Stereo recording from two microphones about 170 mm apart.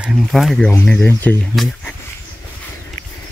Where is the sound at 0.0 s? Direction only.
Centre (ahead or behind).